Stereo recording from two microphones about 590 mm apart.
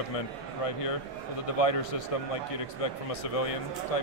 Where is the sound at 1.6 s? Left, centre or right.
Left.